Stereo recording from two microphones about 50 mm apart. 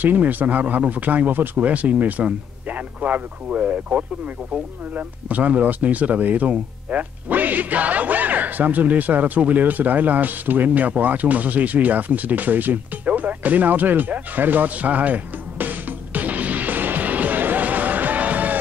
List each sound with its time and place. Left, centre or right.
0.0 s speech: right
1.7 s speech: right